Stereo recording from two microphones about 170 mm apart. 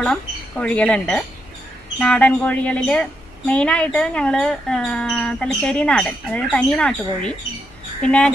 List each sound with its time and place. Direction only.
0.0 s a woman's voice: 5° left (ahead or behind)